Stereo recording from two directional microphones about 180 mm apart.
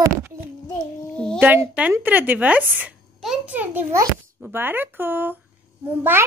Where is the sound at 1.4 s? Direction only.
10° right (ahead or behind).